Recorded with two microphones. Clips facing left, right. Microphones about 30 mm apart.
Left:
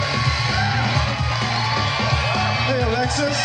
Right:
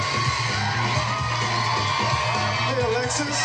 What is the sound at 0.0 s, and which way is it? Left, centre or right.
Music, left.